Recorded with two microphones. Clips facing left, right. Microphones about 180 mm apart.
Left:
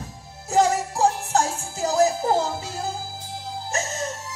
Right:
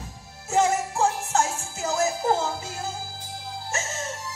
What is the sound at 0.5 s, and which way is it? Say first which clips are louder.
Music: left 2 dB; 35° left (ahead or behind).